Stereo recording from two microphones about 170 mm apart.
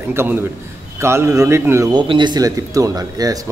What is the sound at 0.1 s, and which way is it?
A man's voice, 15° right (ahead or behind).